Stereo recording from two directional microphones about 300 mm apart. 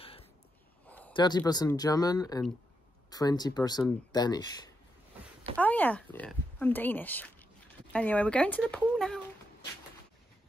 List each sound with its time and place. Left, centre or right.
0.0 s snort: centre
0.8 s a sound: centre
1.1 s speech: centre